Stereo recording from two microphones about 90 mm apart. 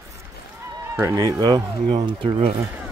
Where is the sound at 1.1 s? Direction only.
45° right (ahead or behind).